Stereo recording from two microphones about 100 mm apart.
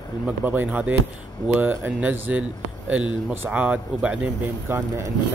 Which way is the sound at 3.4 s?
15° right (ahead or behind).